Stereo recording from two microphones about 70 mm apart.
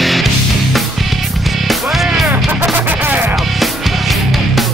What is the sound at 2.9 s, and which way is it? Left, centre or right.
Music, right.